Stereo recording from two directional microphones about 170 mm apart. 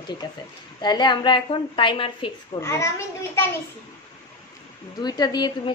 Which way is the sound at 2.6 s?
15° left (ahead or behind).